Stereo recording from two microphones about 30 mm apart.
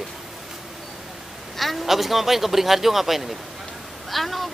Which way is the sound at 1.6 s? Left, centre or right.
Centre.